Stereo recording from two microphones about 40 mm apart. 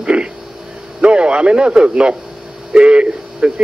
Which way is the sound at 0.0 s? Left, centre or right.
Right.